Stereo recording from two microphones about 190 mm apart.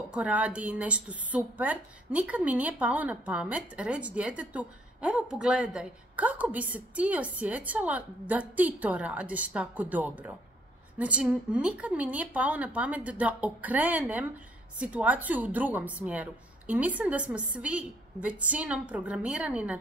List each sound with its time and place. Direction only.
0.1 s a woman's voice: 5° right (ahead or behind)